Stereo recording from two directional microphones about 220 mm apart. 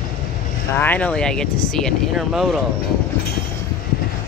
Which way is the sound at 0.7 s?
10° left (ahead or behind).